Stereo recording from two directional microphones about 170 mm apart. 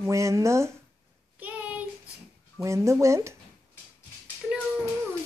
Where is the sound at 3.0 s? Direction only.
15° right (ahead or behind).